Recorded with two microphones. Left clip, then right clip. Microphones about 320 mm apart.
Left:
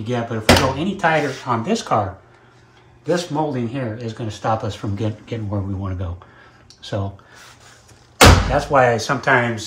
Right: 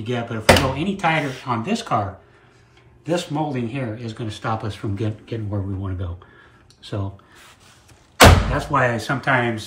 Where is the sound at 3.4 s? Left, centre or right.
Centre.